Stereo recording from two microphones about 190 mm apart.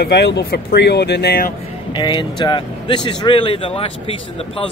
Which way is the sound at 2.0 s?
25° left (ahead or behind).